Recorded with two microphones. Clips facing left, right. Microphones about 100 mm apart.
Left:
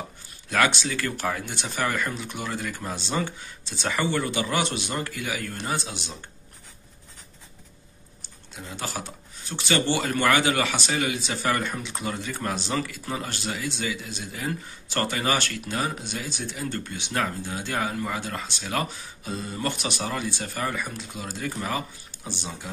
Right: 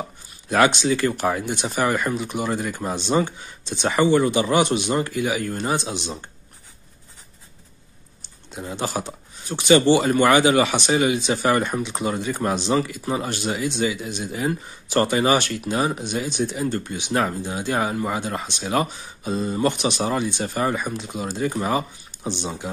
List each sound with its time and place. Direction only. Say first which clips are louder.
0.5 s speech: right 6 dB; 20° right (ahead or behind)
8.2 s speech: right 7 dB; 20° right (ahead or behind)